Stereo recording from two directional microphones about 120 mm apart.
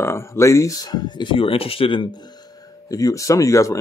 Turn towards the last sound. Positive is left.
turn(degrees=25)  # may be behind; listen again after turning